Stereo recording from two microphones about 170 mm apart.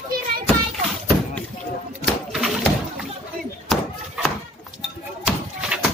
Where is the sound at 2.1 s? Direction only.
Centre (ahead or behind).